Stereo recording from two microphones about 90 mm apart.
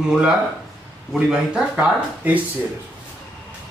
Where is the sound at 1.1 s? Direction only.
10° right (ahead or behind).